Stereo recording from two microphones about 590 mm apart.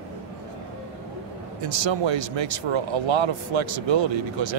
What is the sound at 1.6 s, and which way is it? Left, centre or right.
Speech, right.